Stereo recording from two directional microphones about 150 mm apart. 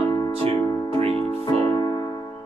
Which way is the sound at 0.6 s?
25° left (ahead or behind).